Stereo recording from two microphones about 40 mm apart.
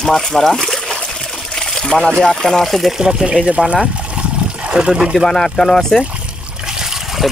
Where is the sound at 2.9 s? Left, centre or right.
Centre.